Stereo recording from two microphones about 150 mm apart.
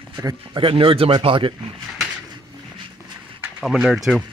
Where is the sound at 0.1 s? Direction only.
25° right (ahead or behind).